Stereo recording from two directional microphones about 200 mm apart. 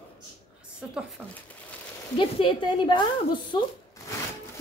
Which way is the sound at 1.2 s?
Centre (ahead or behind).